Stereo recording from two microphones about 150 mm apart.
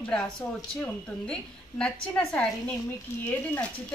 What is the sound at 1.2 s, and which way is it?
A woman's voice, 5° left (ahead or behind).